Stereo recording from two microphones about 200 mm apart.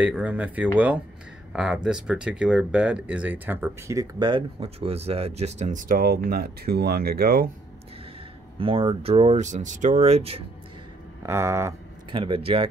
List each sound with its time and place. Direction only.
0.0 s speech: 5° right (ahead or behind); by 7.4 s 50° right (ahead or behind)
8.5 s speech: 25° right (ahead or behind)
11.2 s speech: 15° right (ahead or behind)
12.1 s speech: 25° right (ahead or behind)